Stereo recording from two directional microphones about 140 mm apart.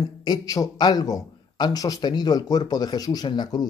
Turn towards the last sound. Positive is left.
turn(degrees=30)  # may be behind; listen again after turning